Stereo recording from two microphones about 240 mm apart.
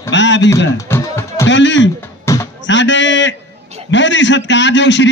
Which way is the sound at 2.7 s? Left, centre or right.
Left.